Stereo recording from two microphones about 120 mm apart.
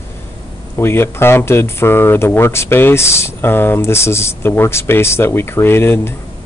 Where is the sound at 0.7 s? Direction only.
20° left (ahead or behind).